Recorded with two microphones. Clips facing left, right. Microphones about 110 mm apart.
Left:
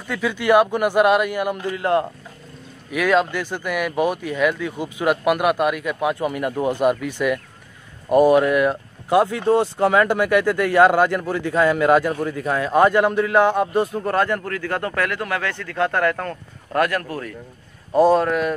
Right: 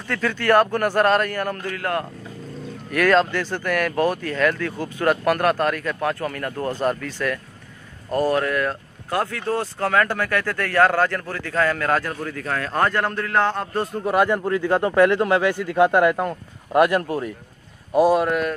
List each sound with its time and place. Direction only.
0.1 s speech: 15° left (ahead or behind)
2.9 s speech: 10° left (ahead or behind)
14.1 s a man's voice: 15° right (ahead or behind)
17.9 s a man's voice: 10° right (ahead or behind)